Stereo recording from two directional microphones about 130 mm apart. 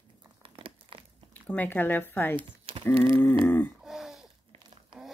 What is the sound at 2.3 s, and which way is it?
Speech, 40° right (ahead or behind).